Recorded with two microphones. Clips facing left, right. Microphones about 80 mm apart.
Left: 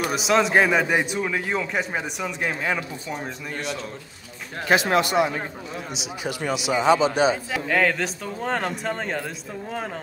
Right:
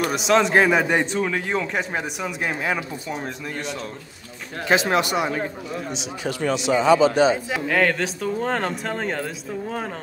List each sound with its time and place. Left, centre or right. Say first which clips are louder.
0.0 s a man's voice: right 2 dB; centre
4.6 s speech: even; right
5.9 s a man's voice: even; centre
6.9 s speech: right 2 dB; centre
7.6 s a man's voice: right 1 dB; centre